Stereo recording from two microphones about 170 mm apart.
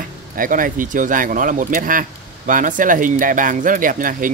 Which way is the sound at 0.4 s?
55° right (ahead or behind).